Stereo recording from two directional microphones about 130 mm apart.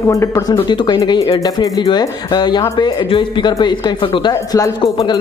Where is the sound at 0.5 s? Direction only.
35° left (ahead or behind).